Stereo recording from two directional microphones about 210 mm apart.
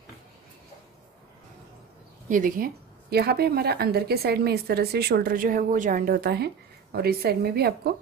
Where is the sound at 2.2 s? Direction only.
40° right (ahead or behind).